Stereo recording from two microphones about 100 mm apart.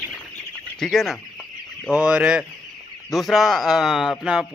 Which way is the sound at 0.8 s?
5° left (ahead or behind).